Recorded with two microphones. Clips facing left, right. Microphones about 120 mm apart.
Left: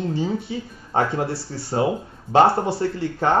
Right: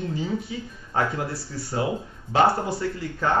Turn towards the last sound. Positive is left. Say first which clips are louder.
# left 4 dB
turn(degrees=30)  # may be behind; listen again after turning